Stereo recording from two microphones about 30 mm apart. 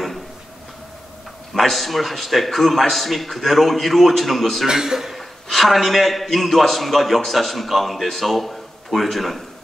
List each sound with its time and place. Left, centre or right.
1.5 s a man's voice: centre
4.6 s a man's voice: centre
5.1 s a man's voice: centre